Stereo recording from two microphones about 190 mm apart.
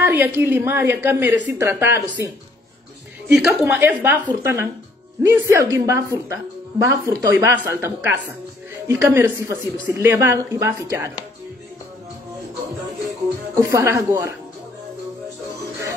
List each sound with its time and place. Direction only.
0.0 s a woman's voice: 10° right (ahead or behind)
3.3 s a woman's voice: centre (ahead or behind)
13.6 s a woman's voice: 15° right (ahead or behind)